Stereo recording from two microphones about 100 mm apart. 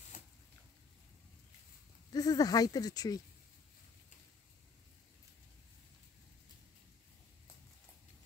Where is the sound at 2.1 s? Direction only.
40° left (ahead or behind).